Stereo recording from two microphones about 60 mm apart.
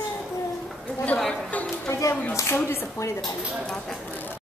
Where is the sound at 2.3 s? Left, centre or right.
Left.